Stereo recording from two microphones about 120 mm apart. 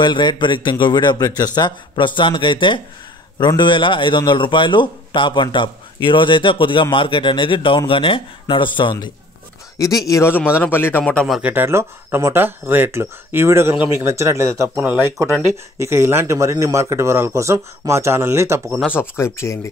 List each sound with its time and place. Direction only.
0.0 s a man's voice: 40° left (ahead or behind)
9.8 s a man's voice: 30° left (ahead or behind)
11.4 s speech: 15° right (ahead or behind)
18.9 s a man's voice: 20° left (ahead or behind)